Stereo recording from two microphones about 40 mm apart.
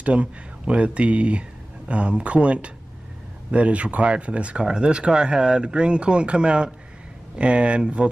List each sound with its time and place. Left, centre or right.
0.0 s speech: right